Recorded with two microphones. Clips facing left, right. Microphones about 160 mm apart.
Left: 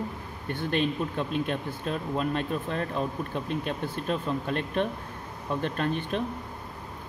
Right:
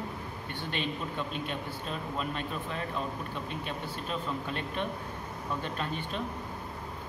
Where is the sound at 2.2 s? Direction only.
50° left (ahead or behind).